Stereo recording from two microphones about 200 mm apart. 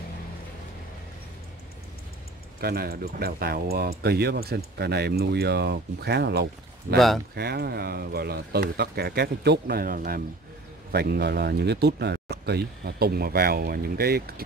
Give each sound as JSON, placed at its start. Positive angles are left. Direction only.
{"t": 2.6, "sound": "speech", "side_deg": -50}